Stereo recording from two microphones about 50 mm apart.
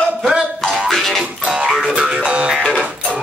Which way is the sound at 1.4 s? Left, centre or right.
Right.